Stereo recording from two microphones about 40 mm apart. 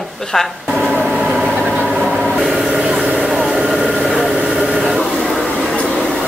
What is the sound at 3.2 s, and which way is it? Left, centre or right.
Vehicle, centre.